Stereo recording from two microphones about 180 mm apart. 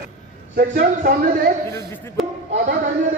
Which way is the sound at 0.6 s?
60° right (ahead or behind).